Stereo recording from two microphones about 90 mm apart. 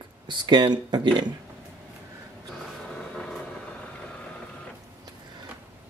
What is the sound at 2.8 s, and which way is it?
Vehicle, 10° left (ahead or behind).